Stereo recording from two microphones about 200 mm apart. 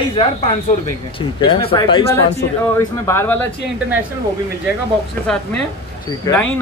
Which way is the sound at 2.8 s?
10° left (ahead or behind).